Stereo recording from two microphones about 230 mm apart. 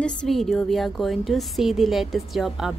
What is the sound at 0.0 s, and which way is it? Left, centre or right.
A woman's voice, centre.